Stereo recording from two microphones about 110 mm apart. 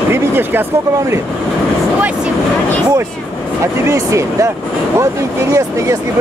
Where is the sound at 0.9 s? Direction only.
25° right (ahead or behind).